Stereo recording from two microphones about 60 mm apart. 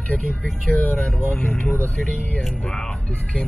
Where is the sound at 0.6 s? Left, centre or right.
Left.